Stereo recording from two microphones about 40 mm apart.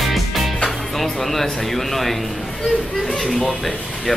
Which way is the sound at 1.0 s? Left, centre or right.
Centre.